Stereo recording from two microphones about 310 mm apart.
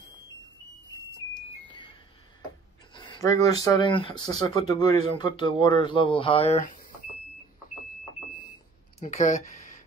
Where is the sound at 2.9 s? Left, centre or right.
Centre.